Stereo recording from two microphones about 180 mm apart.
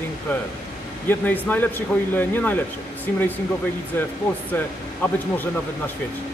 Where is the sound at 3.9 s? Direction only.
10° left (ahead or behind).